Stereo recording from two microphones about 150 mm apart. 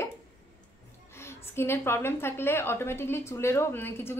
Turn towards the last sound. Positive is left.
turn(degrees=15)  # may be behind; listen again after turning